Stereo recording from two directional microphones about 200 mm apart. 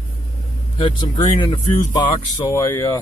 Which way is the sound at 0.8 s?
25° left (ahead or behind).